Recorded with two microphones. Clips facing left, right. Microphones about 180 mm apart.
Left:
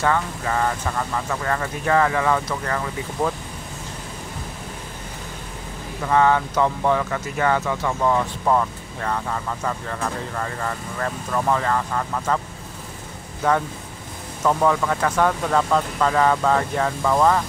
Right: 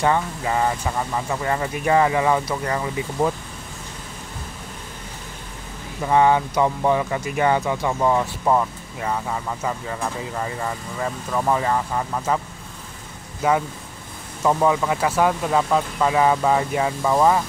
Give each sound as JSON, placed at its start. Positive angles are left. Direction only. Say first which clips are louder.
{"t": 0.0, "sound": "speech", "louder": "right 1 dB", "side_deg": -15}
{"t": 6.0, "sound": "speech", "louder": "right 1 dB", "side_deg": -15}
{"t": 13.4, "sound": "speech", "louder": "right 1 dB", "side_deg": -10}